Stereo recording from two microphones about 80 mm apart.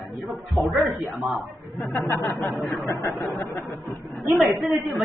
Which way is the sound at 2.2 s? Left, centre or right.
Left.